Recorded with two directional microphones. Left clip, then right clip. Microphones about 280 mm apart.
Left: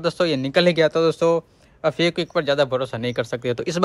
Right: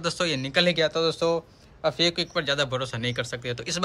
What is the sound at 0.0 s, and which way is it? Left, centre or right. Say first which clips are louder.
Speech: left 6 dB; centre.